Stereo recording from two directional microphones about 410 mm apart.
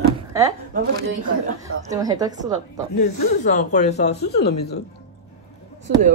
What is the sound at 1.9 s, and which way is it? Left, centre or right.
Speech, centre.